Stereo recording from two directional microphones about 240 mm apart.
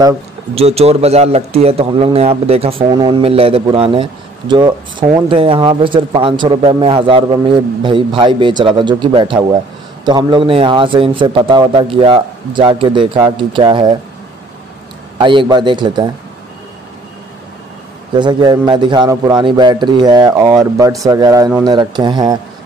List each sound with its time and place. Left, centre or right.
0.6 s a man's voice: right
15.1 s a man's voice: centre
18.1 s a man's voice: centre